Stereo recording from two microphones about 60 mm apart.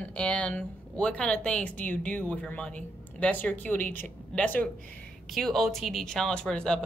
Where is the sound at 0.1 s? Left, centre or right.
Centre.